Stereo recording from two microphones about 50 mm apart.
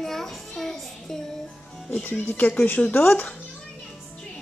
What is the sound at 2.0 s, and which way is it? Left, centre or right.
Speech, left.